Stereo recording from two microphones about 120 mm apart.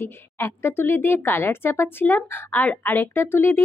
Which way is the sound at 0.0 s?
20° left (ahead or behind).